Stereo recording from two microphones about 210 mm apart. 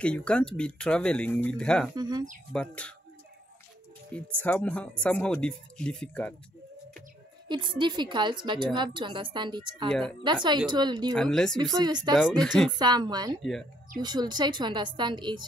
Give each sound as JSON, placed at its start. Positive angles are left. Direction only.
{"t": 0.0, "sound": "speech", "side_deg": 5}
{"t": 2.0, "sound": "a woman's voice", "side_deg": -20}
{"t": 2.5, "sound": "speech", "side_deg": 5}
{"t": 4.1, "sound": "speech", "side_deg": 5}
{"t": 7.4, "sound": "a woman's voice", "side_deg": -20}
{"t": 9.8, "sound": "speech", "side_deg": 0}
{"t": 10.2, "sound": "a woman's voice", "side_deg": -20}
{"t": 11.1, "sound": "speech", "side_deg": 5}
{"t": 11.5, "sound": "a woman's voice", "side_deg": -20}
{"t": 12.4, "sound": "speech", "side_deg": 0}
{"t": 12.7, "sound": "a woman's voice", "side_deg": -20}
{"t": 13.4, "sound": "speech", "side_deg": 0}
{"t": 14.0, "sound": "a woman's voice", "side_deg": -20}